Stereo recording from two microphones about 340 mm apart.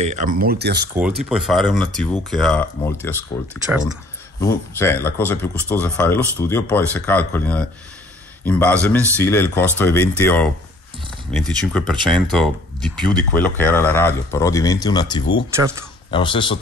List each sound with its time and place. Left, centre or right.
0.0 s speech: right
0.9 s speech: centre
4.4 s speech: centre
15.5 s speech: centre
16.1 s speech: centre